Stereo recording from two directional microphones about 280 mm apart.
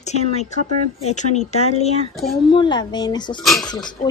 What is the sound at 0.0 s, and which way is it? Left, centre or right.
A woman's voice, left.